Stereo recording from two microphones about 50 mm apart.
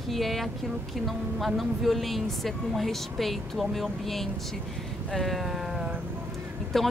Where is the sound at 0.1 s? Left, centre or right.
Centre.